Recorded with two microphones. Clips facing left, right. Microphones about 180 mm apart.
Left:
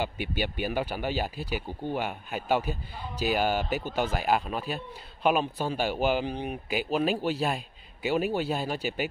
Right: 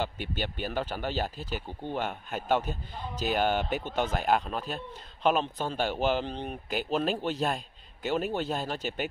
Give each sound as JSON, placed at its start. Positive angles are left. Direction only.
{"t": 0.0, "sound": "speech", "side_deg": 10}